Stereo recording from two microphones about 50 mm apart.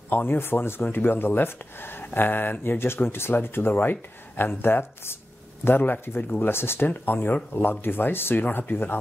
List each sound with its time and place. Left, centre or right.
0.1 s speech: left
2.8 s speech: left
6.9 s speech: left